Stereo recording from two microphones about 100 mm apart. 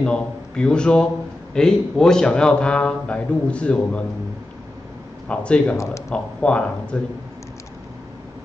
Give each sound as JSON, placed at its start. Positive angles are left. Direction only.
{"t": 0.0, "sound": "a man's voice", "side_deg": 10}
{"t": 5.3, "sound": "a man's voice", "side_deg": 10}
{"t": 5.8, "sound": "speech", "side_deg": 30}
{"t": 6.1, "sound": "a man's voice", "side_deg": 10}